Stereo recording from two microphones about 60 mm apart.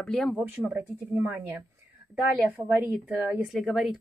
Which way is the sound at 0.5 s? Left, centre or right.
Right.